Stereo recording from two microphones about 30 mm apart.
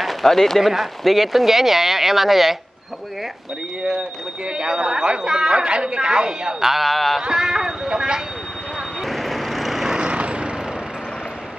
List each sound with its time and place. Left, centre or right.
0.0 s speech: centre
0.6 s speech: centre
4.5 s speech: right
6.6 s speech: centre
6.9 s music: centre
7.2 s speech: right
9.0 s vehicle: centre
9.9 s vehicle: right